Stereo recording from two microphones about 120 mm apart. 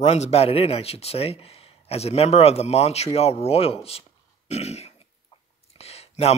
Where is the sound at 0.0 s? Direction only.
65° left (ahead or behind).